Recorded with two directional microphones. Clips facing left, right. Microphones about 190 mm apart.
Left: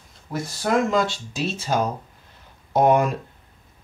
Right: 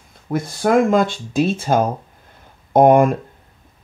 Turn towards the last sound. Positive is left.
turn(degrees=-50)  # may be behind; listen again after turning